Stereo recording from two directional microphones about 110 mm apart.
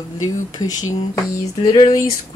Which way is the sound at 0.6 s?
30° left (ahead or behind).